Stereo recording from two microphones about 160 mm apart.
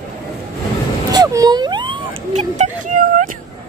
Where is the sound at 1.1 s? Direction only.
25° right (ahead or behind).